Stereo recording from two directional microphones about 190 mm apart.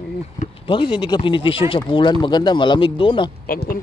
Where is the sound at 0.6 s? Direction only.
25° left (ahead or behind).